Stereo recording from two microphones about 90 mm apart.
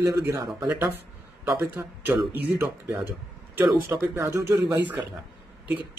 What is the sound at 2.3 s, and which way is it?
Speech, 25° right (ahead or behind).